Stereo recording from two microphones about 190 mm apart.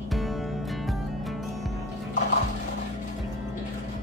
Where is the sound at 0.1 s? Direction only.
Centre (ahead or behind).